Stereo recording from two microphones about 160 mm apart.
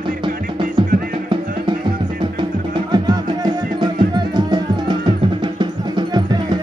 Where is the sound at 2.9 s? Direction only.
25° right (ahead or behind).